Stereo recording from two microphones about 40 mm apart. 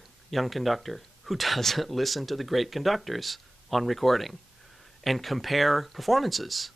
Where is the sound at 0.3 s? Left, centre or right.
Centre.